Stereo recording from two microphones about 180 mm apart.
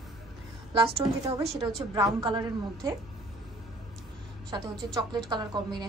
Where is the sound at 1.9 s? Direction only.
25° right (ahead or behind).